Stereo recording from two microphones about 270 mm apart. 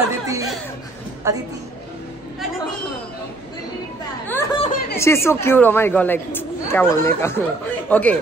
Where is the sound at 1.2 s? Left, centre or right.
Centre.